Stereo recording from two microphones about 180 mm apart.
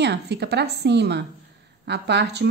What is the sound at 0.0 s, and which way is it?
A woman's voice, 65° right (ahead or behind).